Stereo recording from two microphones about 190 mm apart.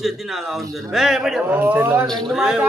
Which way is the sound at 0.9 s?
Centre (ahead or behind).